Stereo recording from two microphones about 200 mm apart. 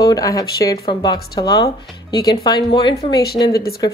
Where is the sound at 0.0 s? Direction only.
20° left (ahead or behind).